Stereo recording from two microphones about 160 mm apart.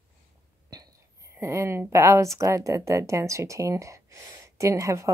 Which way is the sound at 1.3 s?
15° right (ahead or behind).